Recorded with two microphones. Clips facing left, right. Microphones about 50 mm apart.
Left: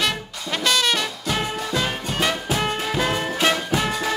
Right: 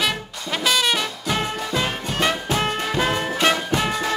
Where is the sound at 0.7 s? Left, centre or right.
Centre.